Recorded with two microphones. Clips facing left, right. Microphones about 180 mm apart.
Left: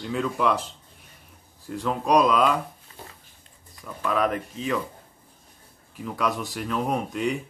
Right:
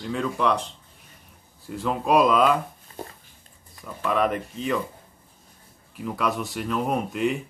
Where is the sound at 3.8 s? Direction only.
Centre (ahead or behind).